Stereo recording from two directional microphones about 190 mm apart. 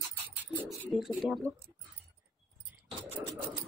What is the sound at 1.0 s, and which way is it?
Speech, centre (ahead or behind).